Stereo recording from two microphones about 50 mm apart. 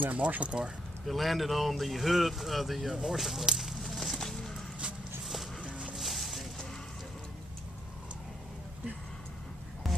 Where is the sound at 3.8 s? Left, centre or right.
Centre.